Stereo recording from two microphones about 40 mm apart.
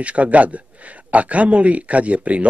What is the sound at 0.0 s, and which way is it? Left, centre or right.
Speech, right.